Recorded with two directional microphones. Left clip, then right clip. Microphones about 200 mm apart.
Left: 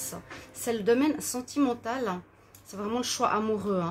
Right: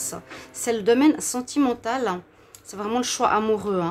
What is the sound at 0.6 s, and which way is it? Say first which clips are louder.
A woman's voice: right 6 dB; 20° right (ahead or behind).